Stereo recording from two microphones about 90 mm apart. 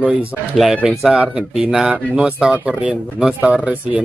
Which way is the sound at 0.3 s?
Centre (ahead or behind).